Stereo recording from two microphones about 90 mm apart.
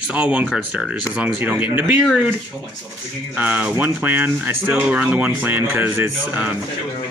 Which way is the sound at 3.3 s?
15° right (ahead or behind).